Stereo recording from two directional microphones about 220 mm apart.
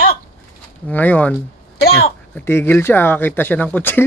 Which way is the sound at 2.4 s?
10° left (ahead or behind).